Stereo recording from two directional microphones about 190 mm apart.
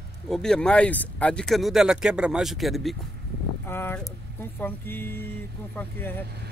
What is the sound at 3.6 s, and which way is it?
Speech, 10° left (ahead or behind).